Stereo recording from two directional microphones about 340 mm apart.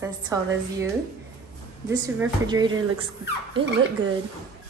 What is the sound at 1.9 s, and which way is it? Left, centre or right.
Speech, centre.